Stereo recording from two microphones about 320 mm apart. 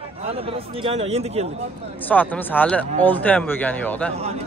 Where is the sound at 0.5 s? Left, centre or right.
Centre.